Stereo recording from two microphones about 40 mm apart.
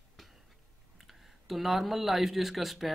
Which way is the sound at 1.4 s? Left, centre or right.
Centre.